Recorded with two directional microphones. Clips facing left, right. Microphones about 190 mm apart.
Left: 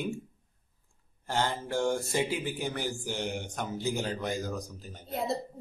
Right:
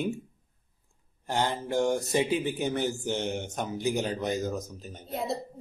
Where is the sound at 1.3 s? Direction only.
15° right (ahead or behind).